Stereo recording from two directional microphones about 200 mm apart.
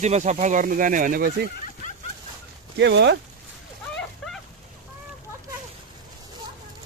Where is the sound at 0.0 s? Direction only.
35° right (ahead or behind).